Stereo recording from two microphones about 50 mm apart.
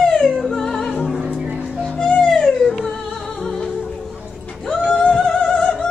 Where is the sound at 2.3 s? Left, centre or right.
Centre.